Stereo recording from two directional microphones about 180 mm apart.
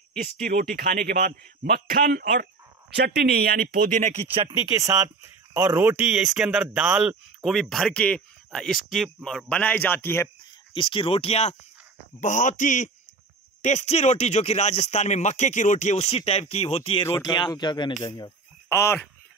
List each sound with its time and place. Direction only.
0.2 s a man's voice: 50° right (ahead or behind)
4.5 s speech: 20° right (ahead or behind); by 10.3 s 10° left (ahead or behind)
10.7 s speech: 30° left (ahead or behind)